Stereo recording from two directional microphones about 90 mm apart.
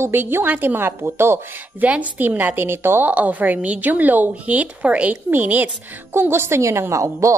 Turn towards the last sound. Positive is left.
turn(degrees=-35)  # may be behind; listen again after turning